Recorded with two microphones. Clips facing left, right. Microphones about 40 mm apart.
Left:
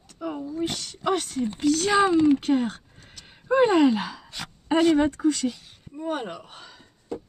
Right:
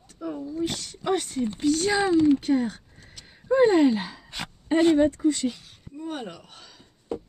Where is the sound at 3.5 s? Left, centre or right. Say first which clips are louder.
Even; left.